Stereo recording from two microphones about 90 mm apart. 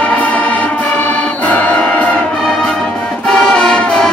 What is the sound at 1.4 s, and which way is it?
Music, 15° left (ahead or behind).